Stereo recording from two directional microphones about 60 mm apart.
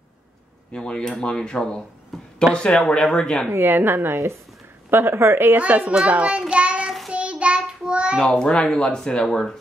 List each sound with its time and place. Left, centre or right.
0.7 s speech: centre
3.4 s a woman's voice: right
5.6 s a child's voice: right
6.5 s child singing: centre
6.8 s child singing: centre
7.1 s child singing: right
8.4 s speech: centre